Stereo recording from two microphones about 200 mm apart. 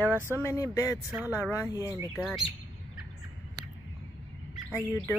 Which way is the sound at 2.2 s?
Centre (ahead or behind).